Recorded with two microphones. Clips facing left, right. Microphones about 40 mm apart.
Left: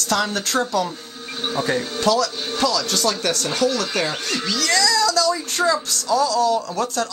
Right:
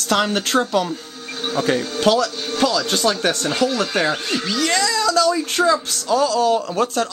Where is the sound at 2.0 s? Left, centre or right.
Right.